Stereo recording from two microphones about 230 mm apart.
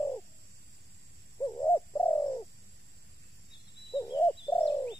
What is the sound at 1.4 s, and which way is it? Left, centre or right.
Bird, centre.